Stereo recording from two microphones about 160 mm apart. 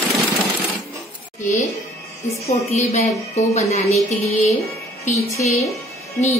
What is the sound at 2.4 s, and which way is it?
A woman's voice, 45° left (ahead or behind).